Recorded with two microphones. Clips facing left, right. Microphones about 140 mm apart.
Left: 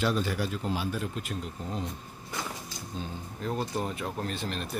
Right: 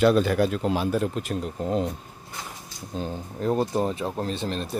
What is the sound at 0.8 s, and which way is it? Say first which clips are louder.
Speech: right 8 dB; 45° right (ahead or behind).